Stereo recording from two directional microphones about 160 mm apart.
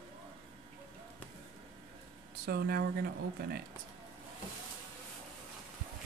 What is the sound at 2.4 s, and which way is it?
Speech, 75° right (ahead or behind).